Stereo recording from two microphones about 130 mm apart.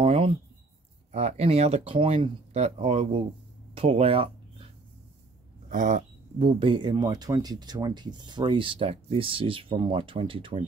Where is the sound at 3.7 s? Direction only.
50° right (ahead or behind).